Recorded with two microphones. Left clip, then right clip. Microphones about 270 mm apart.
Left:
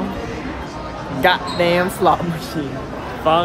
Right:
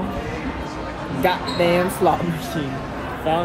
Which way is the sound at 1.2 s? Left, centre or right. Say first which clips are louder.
Left 4 dB; centre.